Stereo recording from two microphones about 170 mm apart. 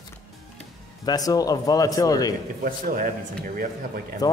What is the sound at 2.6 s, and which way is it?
Speech, 55° right (ahead or behind).